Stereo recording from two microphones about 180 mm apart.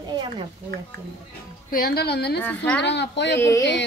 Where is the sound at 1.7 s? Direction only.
60° left (ahead or behind).